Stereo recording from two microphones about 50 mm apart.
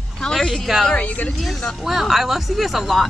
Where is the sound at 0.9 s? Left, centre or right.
Left.